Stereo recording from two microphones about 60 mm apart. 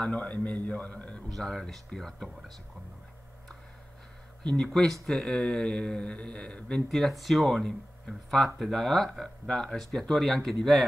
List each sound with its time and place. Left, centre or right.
0.0 s a man's voice: left
1.3 s speech: centre
4.6 s speech: centre
7.0 s speech: centre